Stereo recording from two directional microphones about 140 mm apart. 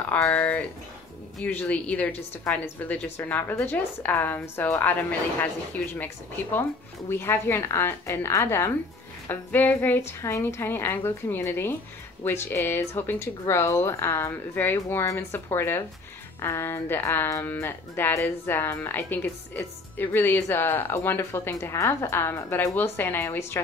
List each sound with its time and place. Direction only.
0.2 s speech: 10° left (ahead or behind)
5.9 s speech: 15° left (ahead or behind)